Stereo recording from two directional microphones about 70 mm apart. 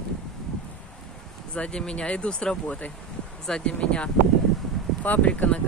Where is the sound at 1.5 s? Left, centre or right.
Centre.